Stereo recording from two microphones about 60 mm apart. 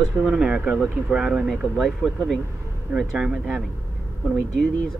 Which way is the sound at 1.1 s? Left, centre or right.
Centre.